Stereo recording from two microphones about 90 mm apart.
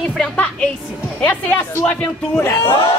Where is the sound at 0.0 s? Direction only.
5° left (ahead or behind).